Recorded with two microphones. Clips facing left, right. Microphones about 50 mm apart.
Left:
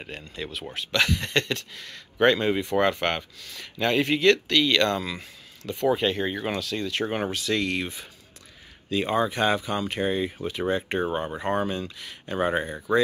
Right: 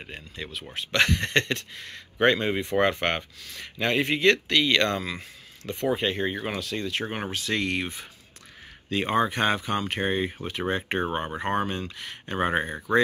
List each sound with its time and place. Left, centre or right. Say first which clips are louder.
0.1 s speech: left 2 dB; centre
0.9 s speech: right 1 dB; right; by 6.6 s centre
6.6 s speech: left 2 dB; right